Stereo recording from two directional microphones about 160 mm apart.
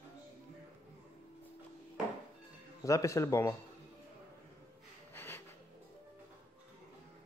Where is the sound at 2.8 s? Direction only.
20° left (ahead or behind).